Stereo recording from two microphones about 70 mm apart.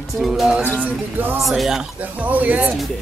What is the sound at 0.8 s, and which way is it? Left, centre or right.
Speech, right.